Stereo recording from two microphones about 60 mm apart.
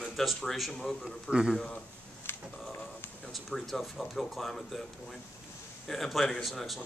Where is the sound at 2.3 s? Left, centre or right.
Left.